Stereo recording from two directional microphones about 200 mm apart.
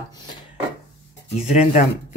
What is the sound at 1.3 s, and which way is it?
Speech, 35° left (ahead or behind).